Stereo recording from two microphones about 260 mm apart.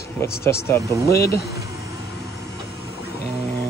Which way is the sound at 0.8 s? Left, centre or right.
Centre.